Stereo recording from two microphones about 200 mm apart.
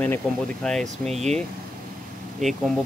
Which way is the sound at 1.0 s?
35° right (ahead or behind).